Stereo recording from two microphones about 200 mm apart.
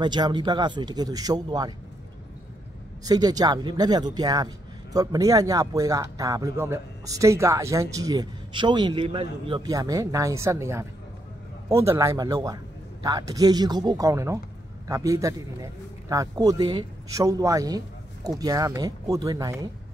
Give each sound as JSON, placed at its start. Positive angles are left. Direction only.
{"t": 0.0, "sound": "speech", "side_deg": -20}
{"t": 3.1, "sound": "speech", "side_deg": -20}